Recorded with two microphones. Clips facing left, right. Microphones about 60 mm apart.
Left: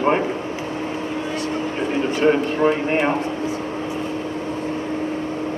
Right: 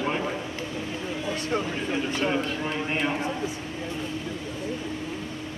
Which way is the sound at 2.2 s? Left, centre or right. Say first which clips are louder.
Left 9 dB; left.